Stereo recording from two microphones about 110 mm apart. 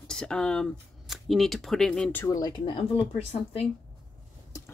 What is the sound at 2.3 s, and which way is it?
Speech, 40° left (ahead or behind).